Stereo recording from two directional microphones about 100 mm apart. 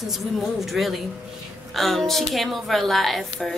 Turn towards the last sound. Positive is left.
turn(degrees=0)  # may be behind; listen again after turning